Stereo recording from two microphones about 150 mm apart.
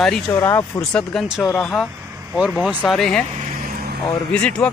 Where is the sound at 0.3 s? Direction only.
20° left (ahead or behind).